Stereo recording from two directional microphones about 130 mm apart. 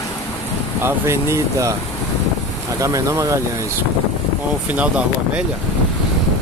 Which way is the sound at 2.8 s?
25° right (ahead or behind).